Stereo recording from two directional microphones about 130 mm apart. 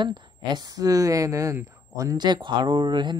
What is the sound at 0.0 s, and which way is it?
Speech, 35° right (ahead or behind).